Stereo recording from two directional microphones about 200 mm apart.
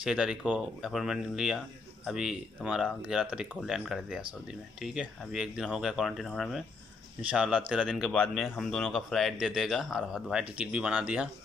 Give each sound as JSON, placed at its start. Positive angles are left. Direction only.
{"t": 0.0, "sound": "speech", "side_deg": -5}